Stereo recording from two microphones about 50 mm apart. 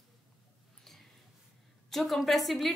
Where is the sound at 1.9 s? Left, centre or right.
Centre.